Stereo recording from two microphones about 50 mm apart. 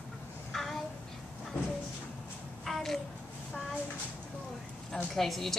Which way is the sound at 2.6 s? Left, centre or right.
Centre.